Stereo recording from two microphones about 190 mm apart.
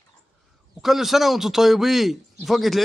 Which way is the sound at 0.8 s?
Centre (ahead or behind).